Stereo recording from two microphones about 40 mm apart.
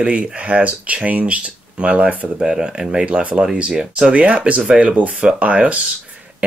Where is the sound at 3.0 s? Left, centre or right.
Right.